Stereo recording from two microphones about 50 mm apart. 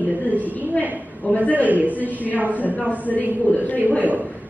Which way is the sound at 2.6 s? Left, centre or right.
Left.